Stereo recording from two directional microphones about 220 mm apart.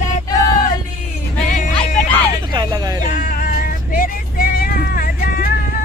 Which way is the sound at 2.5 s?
15° right (ahead or behind).